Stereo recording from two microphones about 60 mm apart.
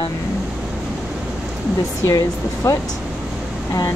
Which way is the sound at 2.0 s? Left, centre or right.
Left.